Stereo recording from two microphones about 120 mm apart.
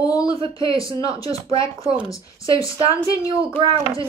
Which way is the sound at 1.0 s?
30° left (ahead or behind).